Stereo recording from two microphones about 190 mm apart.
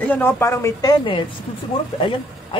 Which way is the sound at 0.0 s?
10° left (ahead or behind).